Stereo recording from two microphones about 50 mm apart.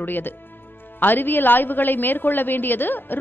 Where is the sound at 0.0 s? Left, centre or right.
Left.